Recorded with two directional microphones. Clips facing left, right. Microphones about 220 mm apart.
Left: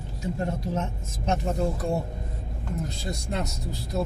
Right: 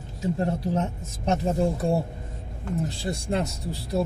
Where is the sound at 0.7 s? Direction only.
35° right (ahead or behind).